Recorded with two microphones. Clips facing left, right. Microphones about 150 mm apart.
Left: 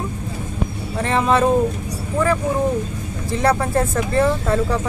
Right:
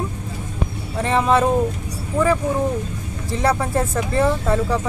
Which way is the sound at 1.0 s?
5° right (ahead or behind).